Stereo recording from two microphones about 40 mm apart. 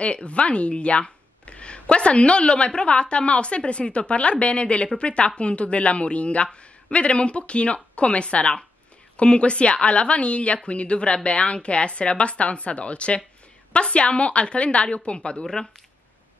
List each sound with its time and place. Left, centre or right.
0.0 s speech: left
15.4 s speech: centre